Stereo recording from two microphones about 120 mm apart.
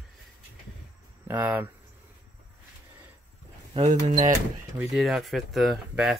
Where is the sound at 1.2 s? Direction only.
15° right (ahead or behind).